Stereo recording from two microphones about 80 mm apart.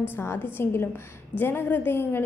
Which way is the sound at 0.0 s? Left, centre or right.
Left.